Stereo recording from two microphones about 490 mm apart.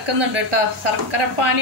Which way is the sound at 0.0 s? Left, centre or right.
Right.